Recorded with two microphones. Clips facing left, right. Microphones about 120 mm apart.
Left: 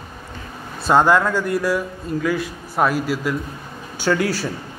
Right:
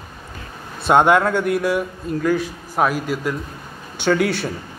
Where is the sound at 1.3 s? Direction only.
65° right (ahead or behind).